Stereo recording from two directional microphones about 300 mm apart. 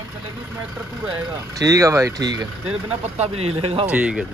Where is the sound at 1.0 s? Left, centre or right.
Centre.